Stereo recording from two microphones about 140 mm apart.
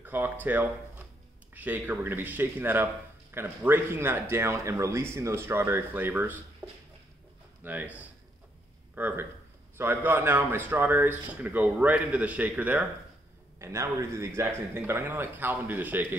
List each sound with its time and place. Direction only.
0.0 s speech: 15° right (ahead or behind)
6.6 s a sound: 15° right (ahead or behind)
7.6 s speech: 10° right (ahead or behind)